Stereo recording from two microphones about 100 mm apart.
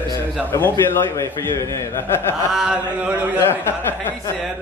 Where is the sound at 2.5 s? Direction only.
10° right (ahead or behind).